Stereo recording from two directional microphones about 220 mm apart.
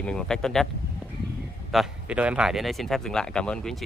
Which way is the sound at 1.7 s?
5° right (ahead or behind).